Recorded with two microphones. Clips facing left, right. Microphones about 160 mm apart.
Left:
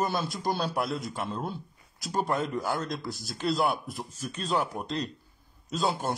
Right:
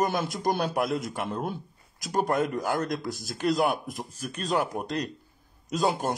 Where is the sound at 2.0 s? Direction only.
45° right (ahead or behind).